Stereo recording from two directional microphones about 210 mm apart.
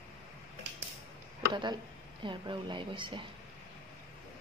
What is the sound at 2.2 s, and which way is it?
Speech, 20° right (ahead or behind).